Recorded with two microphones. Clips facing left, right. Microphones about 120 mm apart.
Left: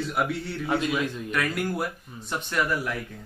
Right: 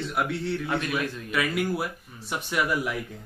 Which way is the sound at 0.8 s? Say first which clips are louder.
Left 2 dB; 20° left (ahead or behind).